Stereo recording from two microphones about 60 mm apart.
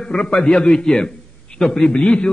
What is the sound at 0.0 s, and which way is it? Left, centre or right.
A man's voice, centre.